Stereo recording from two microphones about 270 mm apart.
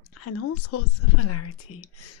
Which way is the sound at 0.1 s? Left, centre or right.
Left.